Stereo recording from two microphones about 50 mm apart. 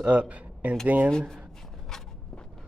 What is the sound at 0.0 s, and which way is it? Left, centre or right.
Speech, right.